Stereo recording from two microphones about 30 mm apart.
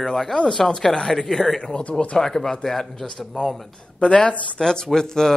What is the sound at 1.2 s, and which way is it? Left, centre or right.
A man's voice, centre.